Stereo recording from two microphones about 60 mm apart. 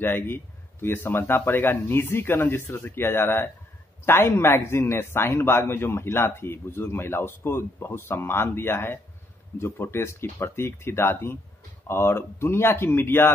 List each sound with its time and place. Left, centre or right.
0.0 s a man's voice: left